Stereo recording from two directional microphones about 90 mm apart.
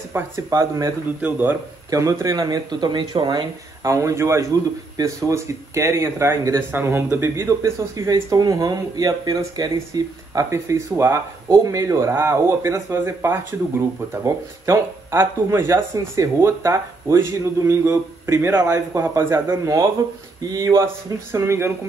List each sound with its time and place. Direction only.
0.1 s speech: 30° right (ahead or behind)
1.2 s speech: 20° right (ahead or behind)
1.9 s speech: 35° right (ahead or behind); by 3.4 s 55° right (ahead or behind)
3.8 s speech: 35° right (ahead or behind)
6.7 s speech: 25° right (ahead or behind)
19.6 s speech: 35° right (ahead or behind)